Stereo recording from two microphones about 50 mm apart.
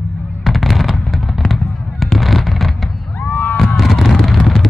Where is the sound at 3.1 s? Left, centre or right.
Left.